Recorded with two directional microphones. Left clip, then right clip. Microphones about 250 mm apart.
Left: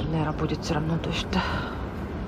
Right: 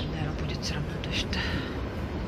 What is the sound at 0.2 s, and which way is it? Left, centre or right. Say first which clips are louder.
A woman's voice: left 6 dB; centre.